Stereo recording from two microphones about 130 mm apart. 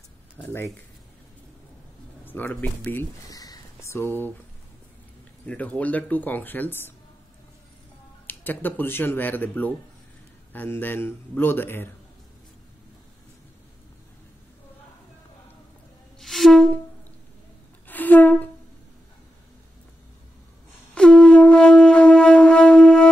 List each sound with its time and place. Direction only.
0.4 s speech: 15° left (ahead or behind)
2.2 s speech: 15° left (ahead or behind)
3.3 s a sound: 30° left (ahead or behind)
5.5 s speech: 10° left (ahead or behind)
8.3 s speech: 15° left (ahead or behind)
16.2 s music: centre (ahead or behind)
17.8 s music: 15° left (ahead or behind)
20.9 s wind instrument: 5° left (ahead or behind)